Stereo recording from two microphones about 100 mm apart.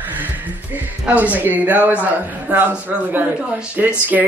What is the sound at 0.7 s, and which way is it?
Speech, 15° right (ahead or behind).